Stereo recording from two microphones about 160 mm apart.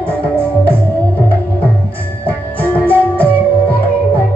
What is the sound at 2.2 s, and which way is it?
Music, 10° left (ahead or behind).